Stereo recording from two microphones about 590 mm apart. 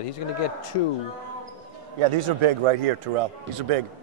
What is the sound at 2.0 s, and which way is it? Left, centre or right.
A man's voice, right.